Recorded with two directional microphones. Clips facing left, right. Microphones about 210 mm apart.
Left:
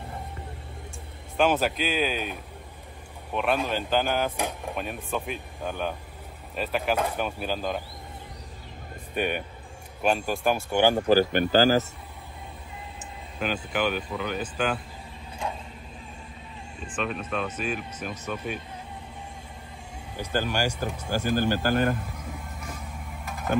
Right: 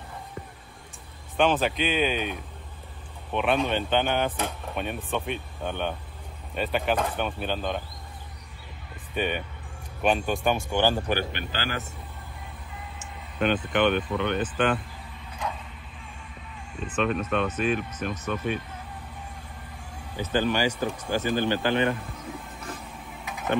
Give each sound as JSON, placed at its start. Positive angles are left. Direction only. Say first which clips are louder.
{"t": 1.5, "sound": "speech", "louder": "even", "side_deg": 0}
{"t": 9.1, "sound": "speech", "louder": "even", "side_deg": 10}
{"t": 10.7, "sound": "speech", "louder": "left 4 dB", "side_deg": 15}
{"t": 11.0, "sound": "speech", "louder": "left 8 dB", "side_deg": 30}
{"t": 13.4, "sound": "speech", "louder": "right 4 dB", "side_deg": 5}
{"t": 16.9, "sound": "speech", "louder": "right 4 dB", "side_deg": 0}
{"t": 20.2, "sound": "speech", "louder": "right 3 dB", "side_deg": 10}
{"t": 23.2, "sound": "a sound", "louder": "even", "side_deg": 0}